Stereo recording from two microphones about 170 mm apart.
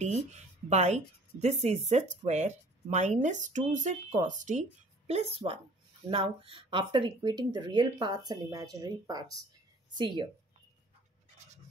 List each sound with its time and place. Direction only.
0.0 s a woman's voice: 45° right (ahead or behind); by 10.2 s 25° right (ahead or behind)